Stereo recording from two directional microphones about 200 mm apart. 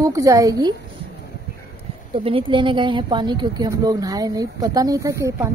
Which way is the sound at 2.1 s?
25° right (ahead or behind).